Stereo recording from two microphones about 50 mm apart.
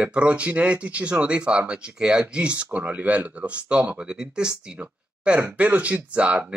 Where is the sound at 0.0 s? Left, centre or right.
Right.